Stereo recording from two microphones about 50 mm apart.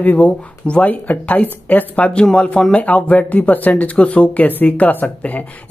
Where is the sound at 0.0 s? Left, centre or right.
Left.